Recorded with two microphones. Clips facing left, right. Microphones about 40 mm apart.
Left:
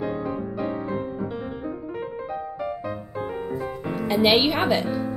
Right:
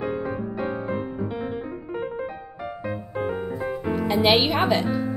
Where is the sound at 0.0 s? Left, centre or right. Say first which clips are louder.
Even; centre.